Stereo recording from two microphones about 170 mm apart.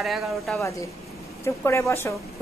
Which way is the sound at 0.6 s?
20° left (ahead or behind).